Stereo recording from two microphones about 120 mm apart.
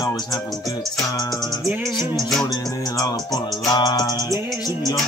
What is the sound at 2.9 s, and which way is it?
Music, 30° left (ahead or behind).